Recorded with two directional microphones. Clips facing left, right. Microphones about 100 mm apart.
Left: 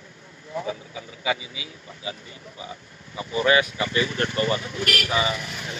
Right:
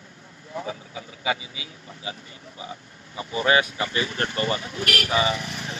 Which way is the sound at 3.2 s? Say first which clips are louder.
Left 1 dB; 30° right (ahead or behind).